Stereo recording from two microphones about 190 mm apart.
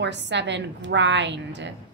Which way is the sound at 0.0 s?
65° right (ahead or behind).